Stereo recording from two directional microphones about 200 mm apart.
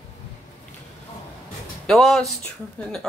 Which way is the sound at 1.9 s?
Centre (ahead or behind).